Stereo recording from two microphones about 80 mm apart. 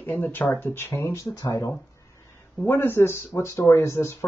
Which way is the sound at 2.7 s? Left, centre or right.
Left.